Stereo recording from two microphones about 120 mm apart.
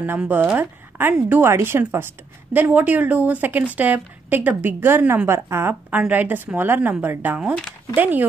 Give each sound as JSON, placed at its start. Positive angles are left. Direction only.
{"t": 0.0, "sound": "a woman's voice", "side_deg": -15}